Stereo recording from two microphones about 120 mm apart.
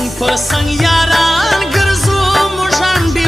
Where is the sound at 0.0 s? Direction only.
Centre (ahead or behind).